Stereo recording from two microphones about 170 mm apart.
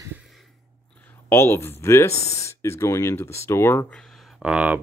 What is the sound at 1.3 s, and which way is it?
Speech, 15° left (ahead or behind).